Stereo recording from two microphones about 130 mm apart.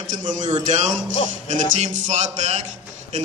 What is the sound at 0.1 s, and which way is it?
A man's voice, 70° right (ahead or behind).